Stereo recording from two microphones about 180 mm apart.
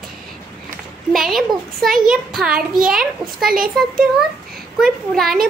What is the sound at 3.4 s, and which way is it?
Speech, 55° right (ahead or behind).